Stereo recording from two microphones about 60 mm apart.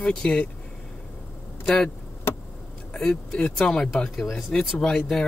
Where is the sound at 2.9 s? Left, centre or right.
Centre.